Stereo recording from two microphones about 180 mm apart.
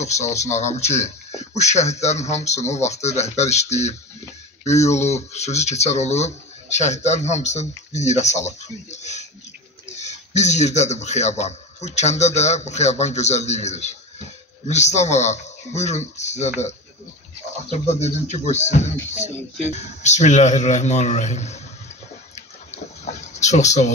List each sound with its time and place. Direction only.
0.0 s speech: 40° left (ahead or behind)
23.0 s speech: 40° left (ahead or behind)